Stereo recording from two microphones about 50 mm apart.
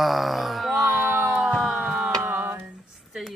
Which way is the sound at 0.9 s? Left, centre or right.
Right.